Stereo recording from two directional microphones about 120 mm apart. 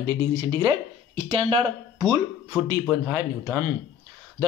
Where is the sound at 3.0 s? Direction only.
25° right (ahead or behind).